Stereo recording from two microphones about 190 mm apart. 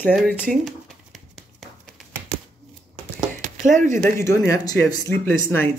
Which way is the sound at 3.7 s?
40° right (ahead or behind).